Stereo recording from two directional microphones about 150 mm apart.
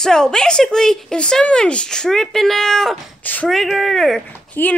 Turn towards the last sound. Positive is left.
turn(degrees=10)  # may be behind; listen again after turning